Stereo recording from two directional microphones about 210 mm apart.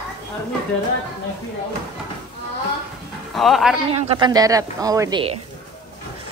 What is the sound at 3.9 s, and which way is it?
A woman's voice, 25° right (ahead or behind).